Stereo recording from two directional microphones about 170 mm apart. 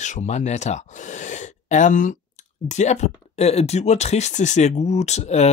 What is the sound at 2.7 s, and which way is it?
Speech, 45° left (ahead or behind).